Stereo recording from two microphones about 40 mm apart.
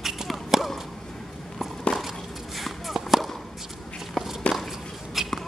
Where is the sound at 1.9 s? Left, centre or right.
Centre.